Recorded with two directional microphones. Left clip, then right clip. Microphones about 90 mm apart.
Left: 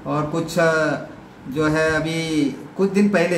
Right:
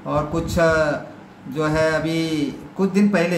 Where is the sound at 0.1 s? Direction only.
15° right (ahead or behind).